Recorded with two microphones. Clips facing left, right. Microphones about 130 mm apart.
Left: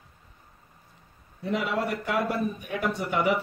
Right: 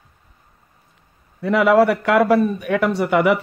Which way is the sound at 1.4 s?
75° right (ahead or behind).